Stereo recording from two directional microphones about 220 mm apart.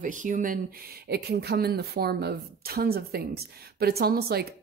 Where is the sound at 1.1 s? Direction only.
45° right (ahead or behind).